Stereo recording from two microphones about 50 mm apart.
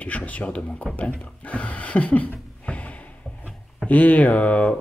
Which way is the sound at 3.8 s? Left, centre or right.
Left.